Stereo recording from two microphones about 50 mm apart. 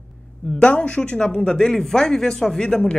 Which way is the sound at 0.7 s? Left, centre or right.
Left.